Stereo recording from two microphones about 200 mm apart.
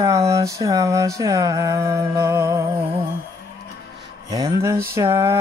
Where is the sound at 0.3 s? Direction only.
15° right (ahead or behind).